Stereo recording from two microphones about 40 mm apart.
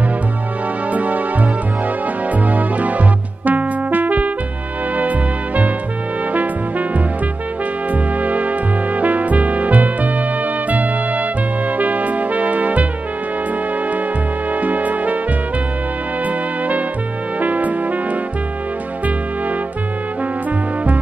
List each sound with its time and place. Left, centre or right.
0.9 s music: right
2.3 s music: right
7.9 s music: right
14.6 s music: right
17.4 s music: right